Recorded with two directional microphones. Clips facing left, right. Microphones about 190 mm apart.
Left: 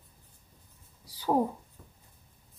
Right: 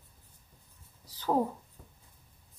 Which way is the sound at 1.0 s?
10° left (ahead or behind).